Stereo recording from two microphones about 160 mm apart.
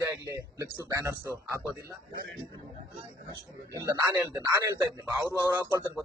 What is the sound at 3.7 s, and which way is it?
A man's voice, 20° right (ahead or behind).